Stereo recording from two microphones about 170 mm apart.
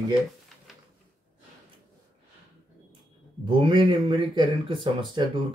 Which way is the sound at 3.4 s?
30° right (ahead or behind).